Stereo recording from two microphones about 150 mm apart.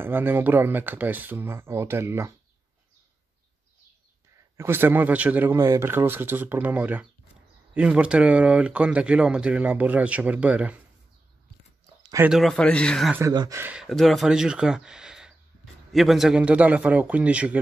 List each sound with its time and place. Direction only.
0.0 s speech: 15° right (ahead or behind)
4.6 s speech: 15° right (ahead or behind)
12.3 s speech: centre (ahead or behind)
13.3 s speech: 25° right (ahead or behind)
13.6 s speech: 10° right (ahead or behind)
13.8 s speech: centre (ahead or behind)